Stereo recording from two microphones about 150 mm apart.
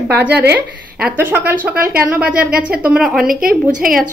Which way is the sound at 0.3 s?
90° right.